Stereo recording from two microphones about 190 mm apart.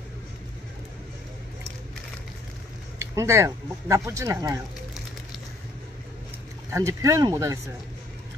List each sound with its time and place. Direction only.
3.2 s speech: 15° right (ahead or behind)
6.7 s speech: 15° right (ahead or behind)